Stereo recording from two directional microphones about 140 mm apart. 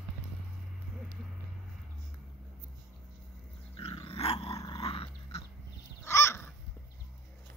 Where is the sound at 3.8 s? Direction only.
40° left (ahead or behind).